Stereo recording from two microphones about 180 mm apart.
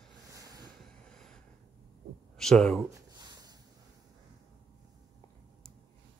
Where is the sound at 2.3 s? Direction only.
5° left (ahead or behind).